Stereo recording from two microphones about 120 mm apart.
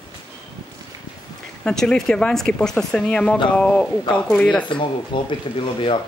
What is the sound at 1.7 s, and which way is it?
Speech, 5° left (ahead or behind).